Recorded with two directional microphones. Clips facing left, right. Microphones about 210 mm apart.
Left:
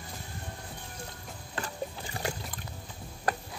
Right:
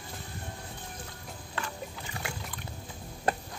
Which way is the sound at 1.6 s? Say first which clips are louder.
Left 3 dB; 35° left (ahead or behind).